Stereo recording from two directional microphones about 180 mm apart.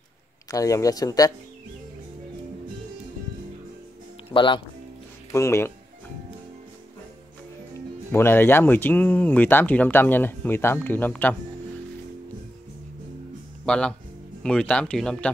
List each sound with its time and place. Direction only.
0.5 s speech: 20° left (ahead or behind)
4.3 s speech: 25° left (ahead or behind)
5.3 s speech: 15° left (ahead or behind)
8.1 s speech: 15° left (ahead or behind)
13.7 s speech: 5° left (ahead or behind)